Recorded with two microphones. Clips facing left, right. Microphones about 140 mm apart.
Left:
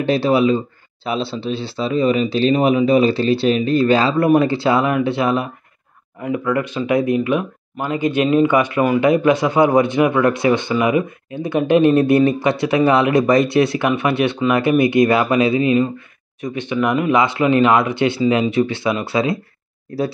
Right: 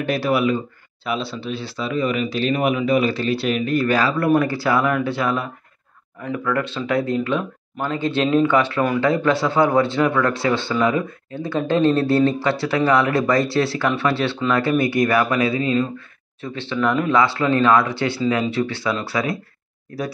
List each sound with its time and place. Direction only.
0.0 s a man's voice: 25° left (ahead or behind)